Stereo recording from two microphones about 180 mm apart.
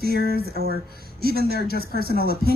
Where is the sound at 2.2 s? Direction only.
60° left (ahead or behind).